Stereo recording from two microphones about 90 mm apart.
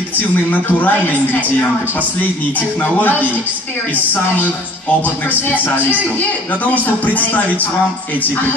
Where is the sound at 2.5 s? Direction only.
20° left (ahead or behind).